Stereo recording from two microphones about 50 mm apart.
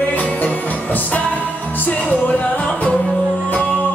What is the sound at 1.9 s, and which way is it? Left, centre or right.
Music, left.